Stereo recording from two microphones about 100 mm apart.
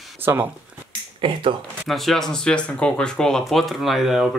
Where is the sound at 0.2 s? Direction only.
20° right (ahead or behind).